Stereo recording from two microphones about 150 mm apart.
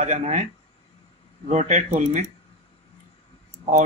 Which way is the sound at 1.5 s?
55° right (ahead or behind).